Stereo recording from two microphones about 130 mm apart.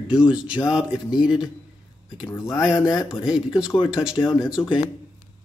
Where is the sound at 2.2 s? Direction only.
25° left (ahead or behind).